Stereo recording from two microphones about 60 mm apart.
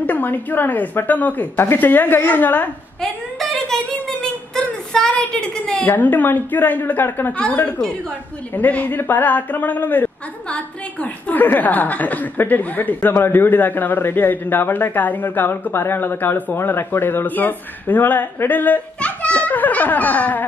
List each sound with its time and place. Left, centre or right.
0.0 s a woman's voice: left
3.0 s a sound: centre
4.6 s child singing: centre
5.1 s a woman's voice: centre
5.9 s a woman's voice: left
8.5 s a woman's voice: left